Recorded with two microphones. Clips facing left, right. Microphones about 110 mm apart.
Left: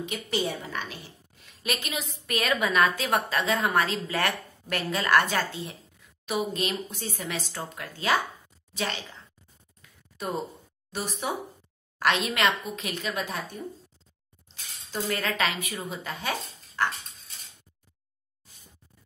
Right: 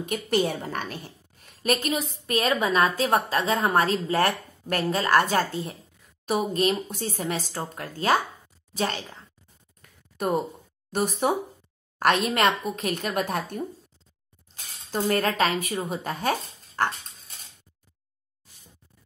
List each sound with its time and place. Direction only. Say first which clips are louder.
0.0 s a woman's voice: right 5 dB; 50° right (ahead or behind)
9.8 s a sound: right 7 dB; 50° right (ahead or behind)
10.9 s a woman's voice: right 7 dB; 50° right (ahead or behind)
14.5 s speech: right 5 dB; 45° right (ahead or behind)